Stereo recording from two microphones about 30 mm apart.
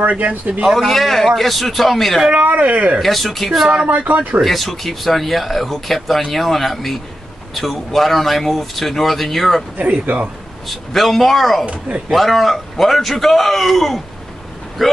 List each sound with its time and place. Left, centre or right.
0.5 s speech: right
0.8 s speech: centre
2.3 s speech: right
3.0 s speech: centre
3.4 s speech: centre
4.1 s speech: right
4.4 s speech: centre
10.0 s speech: right
10.9 s speech: centre
11.6 s speech: right
12.1 s speech: centre